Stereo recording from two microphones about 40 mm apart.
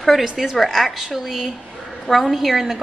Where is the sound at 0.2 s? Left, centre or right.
Centre.